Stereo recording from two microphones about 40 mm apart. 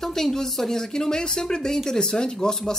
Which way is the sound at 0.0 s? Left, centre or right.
Centre.